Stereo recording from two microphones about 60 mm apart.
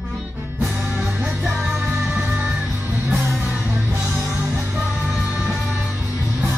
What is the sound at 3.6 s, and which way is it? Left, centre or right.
Music, right.